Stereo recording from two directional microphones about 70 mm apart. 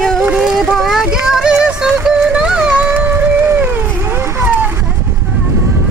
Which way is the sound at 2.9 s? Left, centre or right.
Right.